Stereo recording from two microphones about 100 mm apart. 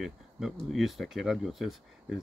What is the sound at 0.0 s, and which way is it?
Speech, 5° right (ahead or behind).